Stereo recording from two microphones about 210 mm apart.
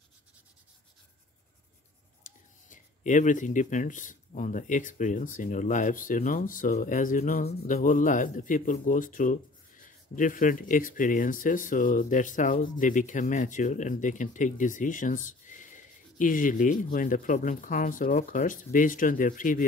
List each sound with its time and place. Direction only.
2.2 s speech: 35° left (ahead or behind)